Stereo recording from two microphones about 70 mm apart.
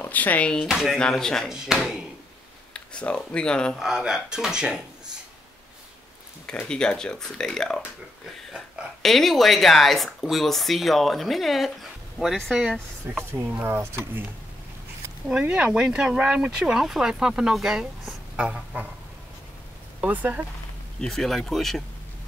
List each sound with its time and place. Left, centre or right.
0.0 s speech: left
0.7 s speech: centre
1.1 s speech: centre
1.5 s speech: centre
2.7 s speech: centre
3.7 s speech: centre
6.7 s speech: centre
9.0 s speech: centre
13.3 s speech: right
15.4 s speech: centre
20.0 s speech: right
21.0 s speech: centre